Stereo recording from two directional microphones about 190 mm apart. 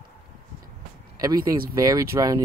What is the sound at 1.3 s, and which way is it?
Speech, 50° right (ahead or behind).